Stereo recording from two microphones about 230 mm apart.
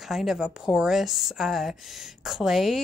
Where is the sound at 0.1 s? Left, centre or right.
Centre.